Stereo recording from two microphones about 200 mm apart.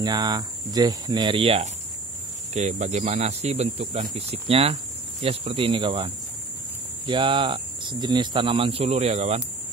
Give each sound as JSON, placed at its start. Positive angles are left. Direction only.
{"t": 0.0, "sound": "speech", "side_deg": -20}